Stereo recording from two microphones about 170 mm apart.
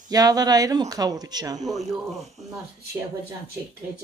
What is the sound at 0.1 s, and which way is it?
A man's voice, 20° right (ahead or behind).